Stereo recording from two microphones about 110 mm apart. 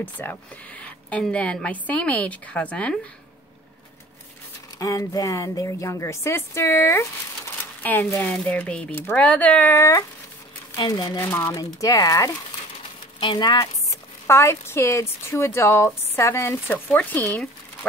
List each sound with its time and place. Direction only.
0.0 s a woman's voice: 15° left (ahead or behind)
4.7 s a woman's voice: 30° left (ahead or behind); by 9.8 s 15° left (ahead or behind)
9.8 s speech: 30° left (ahead or behind)
10.8 s speech: 40° left (ahead or behind)
11.1 s speech: 20° left (ahead or behind)
11.5 s speech: 35° left (ahead or behind)
13.2 s speech: 45° left (ahead or behind)
14.2 s speech: 25° left (ahead or behind)